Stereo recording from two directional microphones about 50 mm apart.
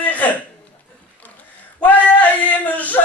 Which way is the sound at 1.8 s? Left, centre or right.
Left.